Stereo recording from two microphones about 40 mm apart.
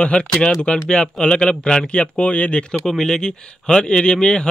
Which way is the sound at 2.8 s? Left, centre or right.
Centre.